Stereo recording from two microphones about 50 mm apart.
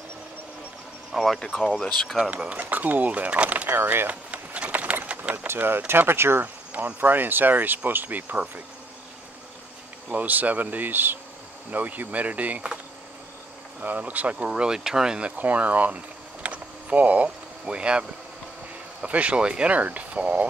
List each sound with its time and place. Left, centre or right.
1.1 s speech: centre
2.3 s speech: right
3.6 s speech: right
4.1 s a sound: right
5.5 s speech: right
6.4 s cricket: right
7.0 s speech: right
10.0 s speech: right
13.7 s speech: right
14.5 s speech: centre
15.1 s speech: right
16.4 s boat: right
19.0 s speech: right